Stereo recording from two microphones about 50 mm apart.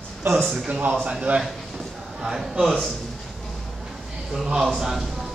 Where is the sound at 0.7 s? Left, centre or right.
Right.